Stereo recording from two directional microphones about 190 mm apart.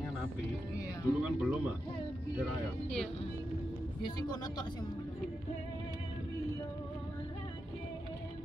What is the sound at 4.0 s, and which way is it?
Speech, 20° left (ahead or behind).